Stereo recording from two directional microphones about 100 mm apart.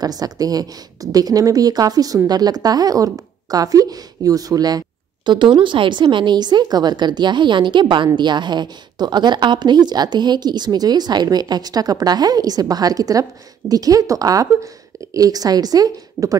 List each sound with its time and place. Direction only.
0.0 s a woman's voice: 40° right (ahead or behind)